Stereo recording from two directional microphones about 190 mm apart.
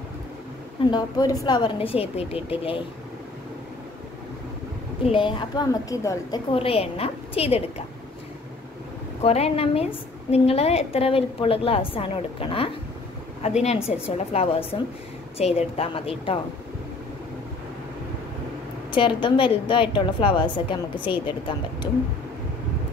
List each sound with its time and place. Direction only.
0.8 s a woman's voice: 20° left (ahead or behind)
5.0 s a woman's voice: 25° left (ahead or behind)
6.5 s a woman's voice: 30° left (ahead or behind)
9.2 s a woman's voice: 30° left (ahead or behind)
18.9 s a woman's voice: 25° left (ahead or behind)